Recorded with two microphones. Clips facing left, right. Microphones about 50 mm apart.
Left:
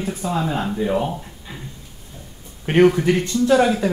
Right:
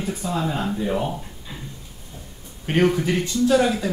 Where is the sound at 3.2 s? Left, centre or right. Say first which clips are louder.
Even; left.